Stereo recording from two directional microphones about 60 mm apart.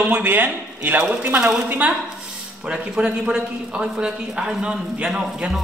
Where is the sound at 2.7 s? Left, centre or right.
Centre.